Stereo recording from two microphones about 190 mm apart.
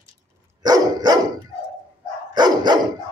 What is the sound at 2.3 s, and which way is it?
Dog, 20° right (ahead or behind).